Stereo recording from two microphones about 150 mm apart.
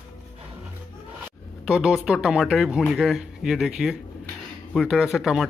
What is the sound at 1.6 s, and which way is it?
Speech, 5° right (ahead or behind).